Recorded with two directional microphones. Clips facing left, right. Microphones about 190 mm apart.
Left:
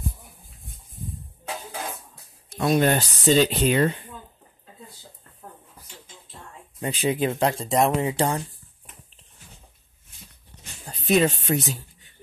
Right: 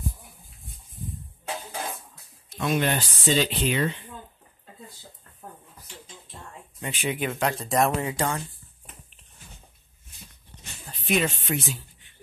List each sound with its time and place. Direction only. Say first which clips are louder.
2.5 s speech: left 5 dB; 40° left (ahead or behind)
6.8 s speech: left 5 dB; 35° left (ahead or behind)
10.9 s speech: left 5 dB; 40° left (ahead or behind)